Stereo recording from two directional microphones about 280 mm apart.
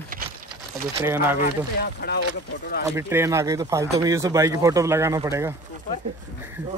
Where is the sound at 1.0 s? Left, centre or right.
Centre.